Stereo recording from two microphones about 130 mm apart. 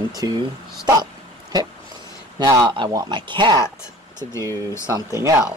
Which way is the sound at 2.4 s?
30° right (ahead or behind).